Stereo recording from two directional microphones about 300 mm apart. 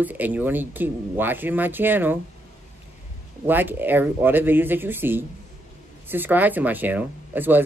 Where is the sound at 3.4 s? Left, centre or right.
Centre.